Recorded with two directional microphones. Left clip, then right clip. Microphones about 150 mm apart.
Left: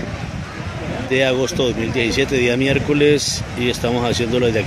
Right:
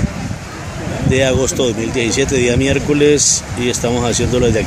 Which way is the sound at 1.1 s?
5° right (ahead or behind).